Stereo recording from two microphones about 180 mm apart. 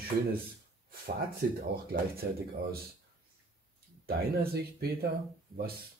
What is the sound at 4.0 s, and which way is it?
Speech, 60° right (ahead or behind).